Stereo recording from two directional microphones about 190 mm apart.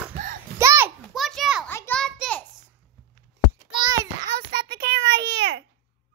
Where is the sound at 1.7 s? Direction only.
10° left (ahead or behind).